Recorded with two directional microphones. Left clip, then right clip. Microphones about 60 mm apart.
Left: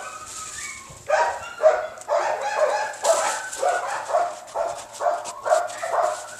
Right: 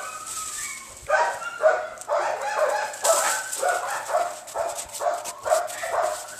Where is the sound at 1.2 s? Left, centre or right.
Left.